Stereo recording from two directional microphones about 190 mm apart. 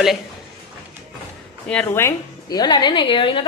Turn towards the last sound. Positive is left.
turn(degrees=25)  # may be behind; listen again after turning